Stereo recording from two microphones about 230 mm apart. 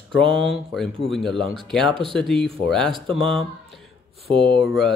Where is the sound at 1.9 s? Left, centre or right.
Right.